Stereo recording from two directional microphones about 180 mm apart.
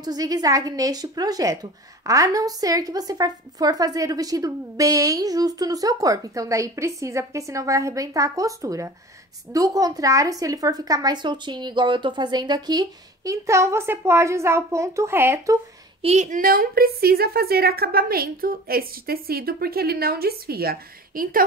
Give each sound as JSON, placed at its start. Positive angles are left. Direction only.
{"t": 0.0, "sound": "speech", "side_deg": -20}
{"t": 16.0, "sound": "a woman's voice", "side_deg": -40}